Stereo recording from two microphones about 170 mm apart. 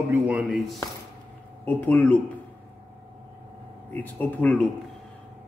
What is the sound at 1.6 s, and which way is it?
Speech, 10° left (ahead or behind).